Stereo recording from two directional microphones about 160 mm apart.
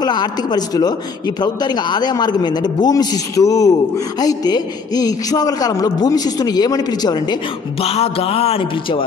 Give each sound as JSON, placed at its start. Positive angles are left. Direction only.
{"t": 0.0, "sound": "a man's voice", "side_deg": 25}
{"t": 7.8, "sound": "music", "side_deg": 40}